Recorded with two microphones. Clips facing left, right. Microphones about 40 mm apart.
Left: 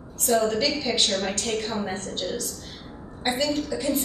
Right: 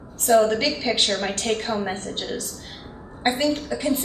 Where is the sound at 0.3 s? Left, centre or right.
Right.